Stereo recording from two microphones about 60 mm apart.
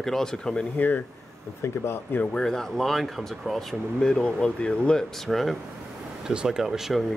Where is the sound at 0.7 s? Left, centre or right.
Left.